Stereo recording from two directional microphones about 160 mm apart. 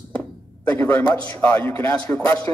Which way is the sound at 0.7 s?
10° left (ahead or behind).